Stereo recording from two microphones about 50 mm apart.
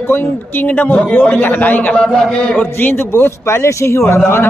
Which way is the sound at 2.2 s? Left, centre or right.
Centre.